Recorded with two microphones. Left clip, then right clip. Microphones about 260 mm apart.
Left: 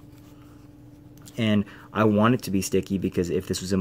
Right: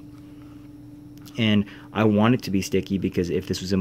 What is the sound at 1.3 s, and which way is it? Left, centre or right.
Speech, centre.